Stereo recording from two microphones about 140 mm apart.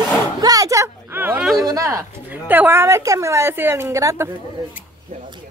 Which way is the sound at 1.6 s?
25° right (ahead or behind).